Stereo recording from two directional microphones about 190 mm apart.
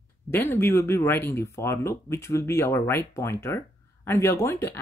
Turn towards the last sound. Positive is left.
turn(degrees=15)  # may be behind; listen again after turning